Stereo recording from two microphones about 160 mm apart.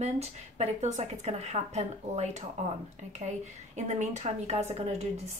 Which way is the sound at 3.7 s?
45° right (ahead or behind).